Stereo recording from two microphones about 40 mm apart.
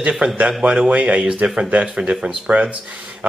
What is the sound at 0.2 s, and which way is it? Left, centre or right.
Speech, right.